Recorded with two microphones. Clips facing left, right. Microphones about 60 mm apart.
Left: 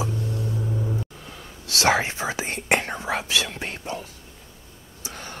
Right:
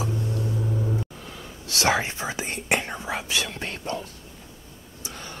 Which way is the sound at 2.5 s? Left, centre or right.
Left.